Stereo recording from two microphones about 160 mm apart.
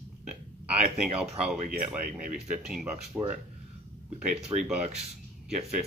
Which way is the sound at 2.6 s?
5° right (ahead or behind).